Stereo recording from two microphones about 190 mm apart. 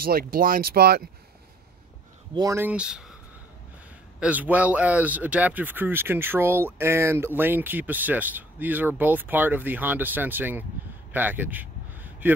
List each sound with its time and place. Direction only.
0.0 s speech: 50° right (ahead or behind)
2.3 s speech: 15° right (ahead or behind)
4.2 s speech: 10° right (ahead or behind)
11.1 s a sound: 10° right (ahead or behind)